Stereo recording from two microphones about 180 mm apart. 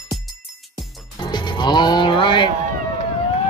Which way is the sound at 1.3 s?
25° left (ahead or behind).